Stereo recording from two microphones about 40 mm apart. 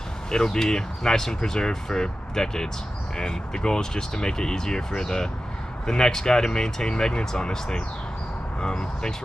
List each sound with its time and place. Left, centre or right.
0.3 s speech: centre